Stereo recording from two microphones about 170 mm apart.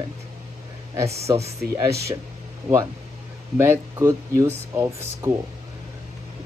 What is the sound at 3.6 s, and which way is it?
Speech, 15° right (ahead or behind).